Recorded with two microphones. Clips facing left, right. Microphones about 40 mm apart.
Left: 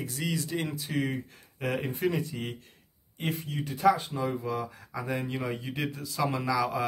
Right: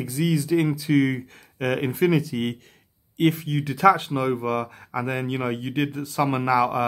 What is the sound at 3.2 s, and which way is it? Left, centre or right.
Speech, right.